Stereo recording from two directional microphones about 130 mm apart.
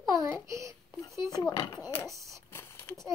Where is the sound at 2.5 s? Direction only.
20° left (ahead or behind).